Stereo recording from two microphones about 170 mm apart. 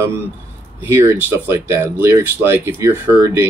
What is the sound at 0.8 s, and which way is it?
Speech, 15° right (ahead or behind).